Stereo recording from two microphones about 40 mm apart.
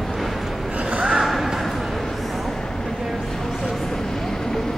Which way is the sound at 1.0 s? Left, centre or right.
Centre.